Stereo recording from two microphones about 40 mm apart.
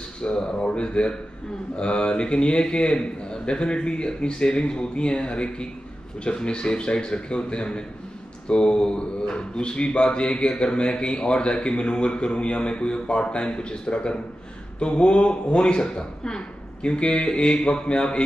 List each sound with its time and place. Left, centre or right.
0.2 s speech: left